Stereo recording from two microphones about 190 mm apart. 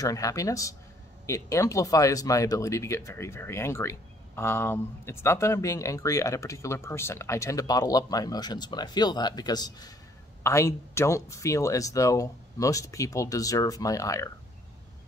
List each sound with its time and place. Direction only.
0.0 s speech: 15° left (ahead or behind)